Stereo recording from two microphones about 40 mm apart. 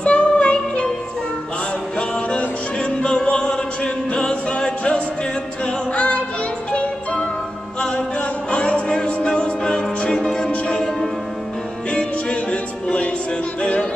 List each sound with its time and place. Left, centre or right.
0.0 s music: left
2.0 s music: left
9.6 s music: centre
11.9 s music: left
13.6 s music: left